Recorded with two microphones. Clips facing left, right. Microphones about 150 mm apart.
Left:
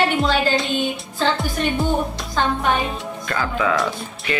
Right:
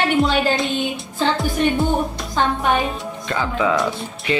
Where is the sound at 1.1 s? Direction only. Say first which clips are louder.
Right 3 dB; centre (ahead or behind).